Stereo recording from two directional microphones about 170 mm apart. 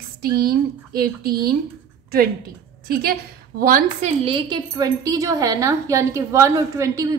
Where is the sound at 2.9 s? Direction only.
60° right (ahead or behind).